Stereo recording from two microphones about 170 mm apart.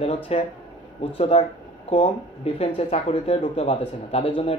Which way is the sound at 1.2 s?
35° left (ahead or behind).